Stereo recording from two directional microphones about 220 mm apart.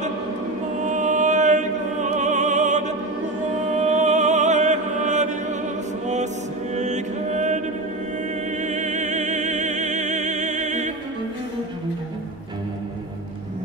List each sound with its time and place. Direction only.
0.8 s opera: 35° right (ahead or behind)
3.7 s music: 30° right (ahead or behind)
6.7 s music: 30° right (ahead or behind)